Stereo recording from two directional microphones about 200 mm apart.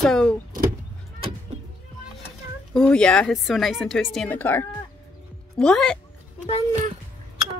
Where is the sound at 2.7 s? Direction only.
5° left (ahead or behind).